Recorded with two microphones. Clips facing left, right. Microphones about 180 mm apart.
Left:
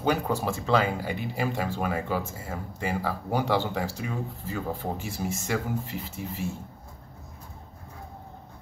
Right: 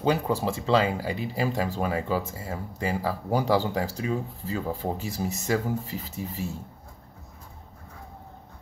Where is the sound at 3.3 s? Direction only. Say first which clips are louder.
Right 2 dB; 35° right (ahead or behind).